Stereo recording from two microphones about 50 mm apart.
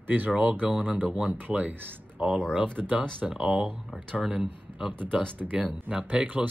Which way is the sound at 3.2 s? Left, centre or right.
Centre.